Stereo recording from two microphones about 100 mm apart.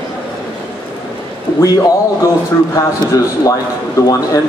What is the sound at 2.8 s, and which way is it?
Speech, 40° left (ahead or behind).